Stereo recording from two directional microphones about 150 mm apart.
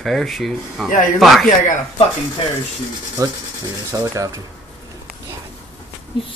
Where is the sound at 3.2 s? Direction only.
25° right (ahead or behind).